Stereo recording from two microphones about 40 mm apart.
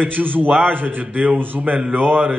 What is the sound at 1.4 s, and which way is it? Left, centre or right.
Speech, right.